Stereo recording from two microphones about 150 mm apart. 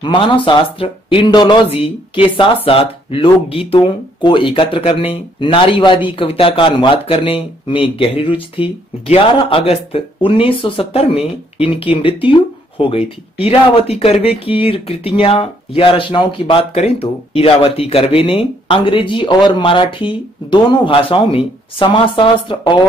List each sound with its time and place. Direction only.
0.0 s speech: 35° left (ahead or behind)